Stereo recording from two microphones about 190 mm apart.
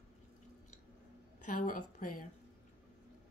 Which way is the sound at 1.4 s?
45° left (ahead or behind).